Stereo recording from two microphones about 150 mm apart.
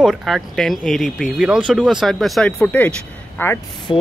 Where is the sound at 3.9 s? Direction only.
35° left (ahead or behind).